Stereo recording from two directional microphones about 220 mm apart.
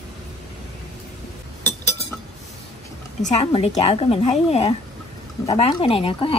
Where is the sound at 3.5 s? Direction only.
25° left (ahead or behind).